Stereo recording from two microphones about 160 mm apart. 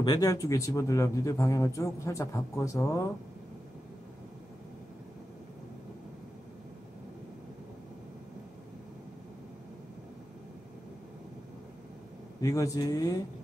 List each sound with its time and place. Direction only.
0.0 s speech: 25° left (ahead or behind)
12.4 s speech: 20° left (ahead or behind)